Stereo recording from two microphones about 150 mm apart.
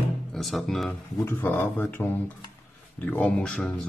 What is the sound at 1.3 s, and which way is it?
Speech, 15° left (ahead or behind).